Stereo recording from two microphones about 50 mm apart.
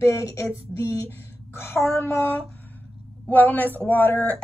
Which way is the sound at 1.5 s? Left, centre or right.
Left.